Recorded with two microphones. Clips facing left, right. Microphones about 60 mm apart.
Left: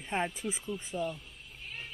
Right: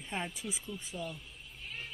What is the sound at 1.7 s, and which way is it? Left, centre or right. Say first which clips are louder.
Vehicle: even; centre.